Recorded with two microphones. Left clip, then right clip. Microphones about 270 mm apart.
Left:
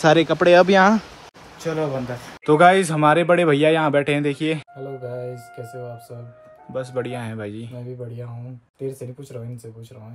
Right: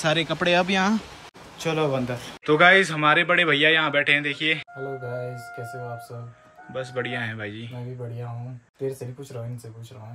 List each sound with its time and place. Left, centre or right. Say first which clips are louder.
0.0 s speech: left 7 dB; centre
2.4 s speech: left 2 dB; centre
6.7 s speech: left 2 dB; centre